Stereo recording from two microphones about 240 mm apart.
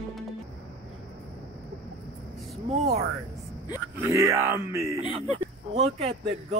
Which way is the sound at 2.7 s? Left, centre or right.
Right.